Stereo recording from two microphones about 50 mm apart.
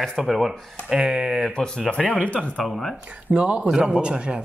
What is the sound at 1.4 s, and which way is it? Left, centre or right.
Speech, centre.